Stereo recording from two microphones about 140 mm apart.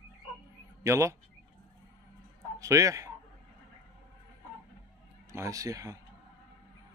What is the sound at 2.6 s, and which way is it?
Speech, 25° right (ahead or behind).